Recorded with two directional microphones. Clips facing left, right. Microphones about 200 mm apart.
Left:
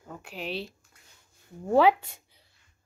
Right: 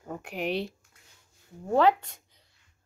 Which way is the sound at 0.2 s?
60° right (ahead or behind).